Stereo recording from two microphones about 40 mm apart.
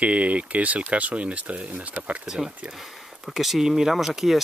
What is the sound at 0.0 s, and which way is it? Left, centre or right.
Speech, right.